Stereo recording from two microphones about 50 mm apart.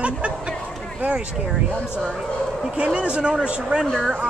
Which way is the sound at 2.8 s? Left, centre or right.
Right.